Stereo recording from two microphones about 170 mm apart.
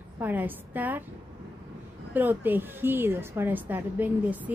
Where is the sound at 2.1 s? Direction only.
10° right (ahead or behind).